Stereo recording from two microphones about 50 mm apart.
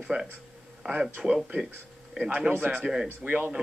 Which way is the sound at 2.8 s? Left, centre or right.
Centre.